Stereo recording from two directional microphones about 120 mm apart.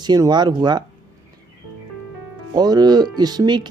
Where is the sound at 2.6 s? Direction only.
35° right (ahead or behind).